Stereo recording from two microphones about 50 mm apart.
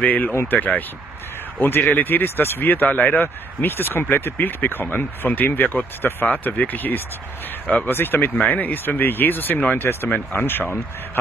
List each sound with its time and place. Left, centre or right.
0.0 s speech: left
7.9 s speech: left